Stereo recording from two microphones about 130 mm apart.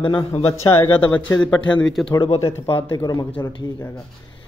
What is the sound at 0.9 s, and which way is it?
A man's voice, 15° left (ahead or behind).